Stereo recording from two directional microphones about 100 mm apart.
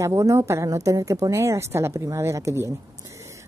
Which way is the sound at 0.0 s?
30° right (ahead or behind).